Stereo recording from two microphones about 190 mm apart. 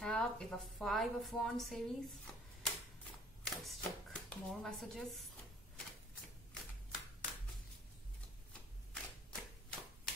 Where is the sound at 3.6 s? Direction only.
Centre (ahead or behind).